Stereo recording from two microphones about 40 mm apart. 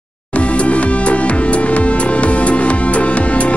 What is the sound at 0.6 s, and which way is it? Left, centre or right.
Music, left.